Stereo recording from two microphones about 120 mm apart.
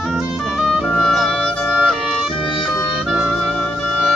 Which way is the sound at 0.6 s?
5° right (ahead or behind).